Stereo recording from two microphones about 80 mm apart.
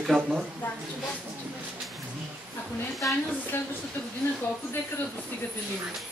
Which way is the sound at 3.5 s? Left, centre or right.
Left.